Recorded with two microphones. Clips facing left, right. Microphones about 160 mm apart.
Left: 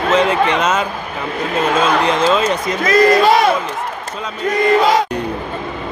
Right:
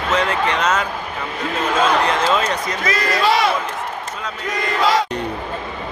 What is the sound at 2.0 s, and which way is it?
Speech, 25° left (ahead or behind).